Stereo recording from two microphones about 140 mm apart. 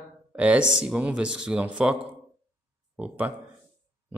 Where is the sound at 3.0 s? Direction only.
10° right (ahead or behind).